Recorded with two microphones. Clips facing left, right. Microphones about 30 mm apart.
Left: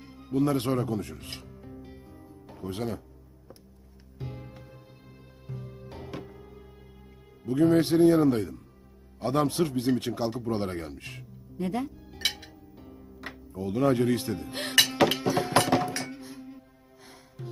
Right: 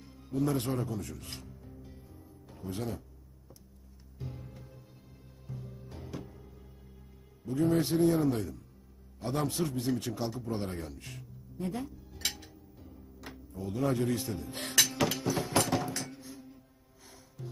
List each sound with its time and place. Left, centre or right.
0.0 s music: left
2.7 s speech: left
4.2 s music: left
8.0 s speech: left
11.6 s music: left